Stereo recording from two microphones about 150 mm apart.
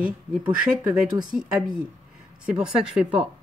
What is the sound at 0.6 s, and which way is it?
Speech, 5° right (ahead or behind).